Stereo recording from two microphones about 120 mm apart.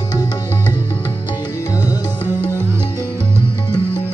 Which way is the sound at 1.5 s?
25° left (ahead or behind).